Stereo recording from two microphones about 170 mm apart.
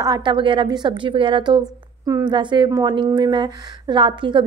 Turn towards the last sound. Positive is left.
turn(degrees=-30)  # may be behind; listen again after turning